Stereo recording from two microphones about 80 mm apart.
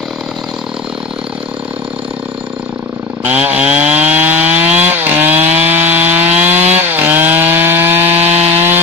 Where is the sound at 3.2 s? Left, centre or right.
Centre.